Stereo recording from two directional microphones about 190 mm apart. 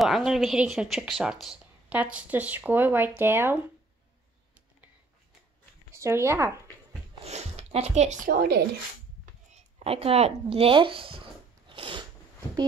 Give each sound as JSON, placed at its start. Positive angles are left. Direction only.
{"t": 0.0, "sound": "speech", "side_deg": 0}
{"t": 5.9, "sound": "speech", "side_deg": -15}
{"t": 7.2, "sound": "speech", "side_deg": -35}
{"t": 9.5, "sound": "a sound", "side_deg": -35}